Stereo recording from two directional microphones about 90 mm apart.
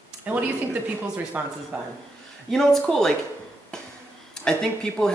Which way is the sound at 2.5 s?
5° left (ahead or behind).